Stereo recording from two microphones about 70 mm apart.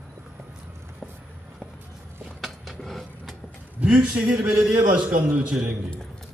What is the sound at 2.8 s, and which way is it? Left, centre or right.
Vehicle, centre.